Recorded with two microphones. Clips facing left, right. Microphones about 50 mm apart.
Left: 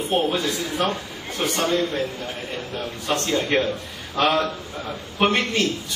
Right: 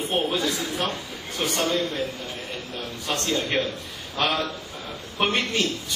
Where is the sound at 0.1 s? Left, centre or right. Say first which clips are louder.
Left 3 dB; centre.